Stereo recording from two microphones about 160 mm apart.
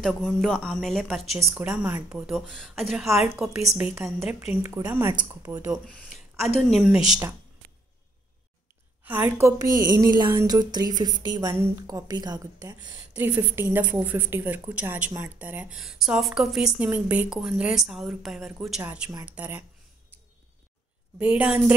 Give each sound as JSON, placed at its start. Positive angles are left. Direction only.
{"t": 0.0, "sound": "a woman's voice", "side_deg": 5}
{"t": 2.1, "sound": "a woman's voice", "side_deg": 0}
{"t": 4.6, "sound": "a woman's voice", "side_deg": -15}
{"t": 5.9, "sound": "a woman's voice", "side_deg": 5}
{"t": 9.0, "sound": "a woman's voice", "side_deg": -15}
{"t": 13.1, "sound": "a woman's voice", "side_deg": -10}
{"t": 21.2, "sound": "a woman's voice", "side_deg": -5}